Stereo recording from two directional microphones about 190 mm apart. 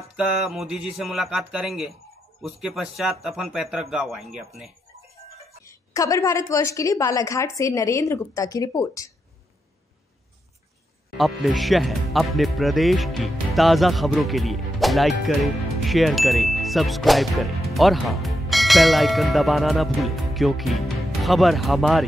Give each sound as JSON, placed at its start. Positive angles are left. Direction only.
{"t": 0.1, "sound": "speech", "side_deg": -5}
{"t": 5.7, "sound": "a woman's voice", "side_deg": 15}
{"t": 11.1, "sound": "speech", "side_deg": 0}